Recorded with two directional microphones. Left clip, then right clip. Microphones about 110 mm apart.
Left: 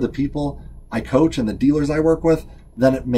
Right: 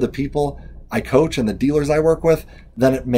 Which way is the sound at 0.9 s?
15° right (ahead or behind).